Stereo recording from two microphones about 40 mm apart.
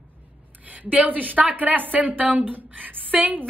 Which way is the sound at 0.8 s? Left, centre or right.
Right.